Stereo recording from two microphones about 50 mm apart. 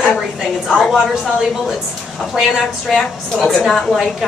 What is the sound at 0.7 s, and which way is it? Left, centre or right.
Speech, centre.